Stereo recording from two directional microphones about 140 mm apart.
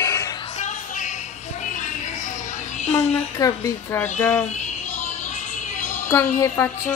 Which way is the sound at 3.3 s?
25° left (ahead or behind).